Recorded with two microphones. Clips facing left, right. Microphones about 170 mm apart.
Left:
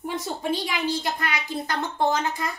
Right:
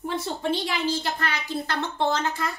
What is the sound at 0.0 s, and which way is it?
A child's voice, 10° left (ahead or behind).